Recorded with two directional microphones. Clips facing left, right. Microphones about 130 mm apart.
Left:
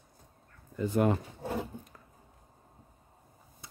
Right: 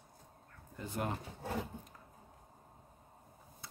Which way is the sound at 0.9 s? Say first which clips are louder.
Left 11 dB; 90° left.